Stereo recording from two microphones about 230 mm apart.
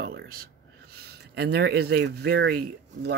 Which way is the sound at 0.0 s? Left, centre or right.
Right.